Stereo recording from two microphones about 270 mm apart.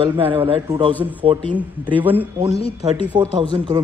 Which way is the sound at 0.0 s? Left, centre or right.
Centre.